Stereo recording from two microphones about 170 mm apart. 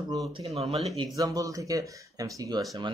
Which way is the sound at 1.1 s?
20° right (ahead or behind).